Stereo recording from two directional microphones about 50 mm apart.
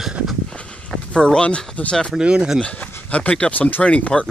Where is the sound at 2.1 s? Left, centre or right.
Centre.